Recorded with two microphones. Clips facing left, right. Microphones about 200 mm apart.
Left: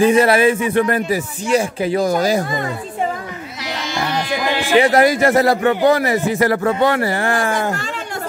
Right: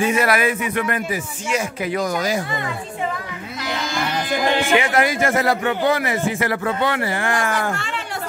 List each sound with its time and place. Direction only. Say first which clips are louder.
0.0 s a man's voice: left 6 dB; 30° left (ahead or behind)
4.7 s a man's voice: left 6 dB; 35° left (ahead or behind)